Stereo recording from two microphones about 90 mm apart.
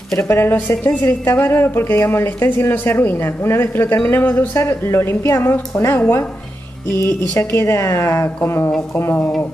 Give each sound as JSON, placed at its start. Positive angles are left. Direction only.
{"t": 0.3, "sound": "speech", "side_deg": 25}